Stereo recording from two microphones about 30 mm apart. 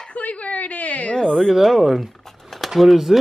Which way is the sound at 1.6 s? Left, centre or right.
Centre.